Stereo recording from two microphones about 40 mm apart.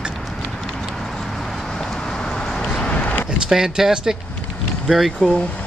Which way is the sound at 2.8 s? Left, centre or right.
Left.